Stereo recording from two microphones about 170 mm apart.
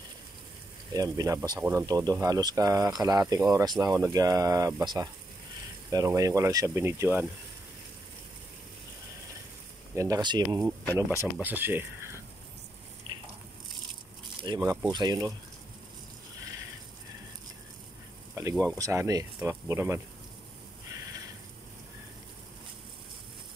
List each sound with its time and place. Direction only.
0.9 s speech: 20° right (ahead or behind)
9.9 s speech: 20° right (ahead or behind)
11.3 s speech: 10° right (ahead or behind)
13.1 s a sound: 25° right (ahead or behind)
14.6 s speech: 10° right (ahead or behind)
14.9 s speech: 25° right (ahead or behind)
18.3 s speech: 15° right (ahead or behind)
20.9 s a sound: 20° right (ahead or behind)